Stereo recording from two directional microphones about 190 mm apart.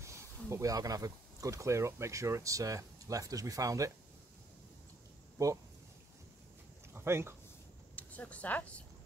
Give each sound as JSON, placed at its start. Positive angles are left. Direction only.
{"t": 0.0, "sound": "speech", "side_deg": -15}
{"t": 5.4, "sound": "speech", "side_deg": -15}
{"t": 6.9, "sound": "speech", "side_deg": -15}
{"t": 7.9, "sound": "speech", "side_deg": 5}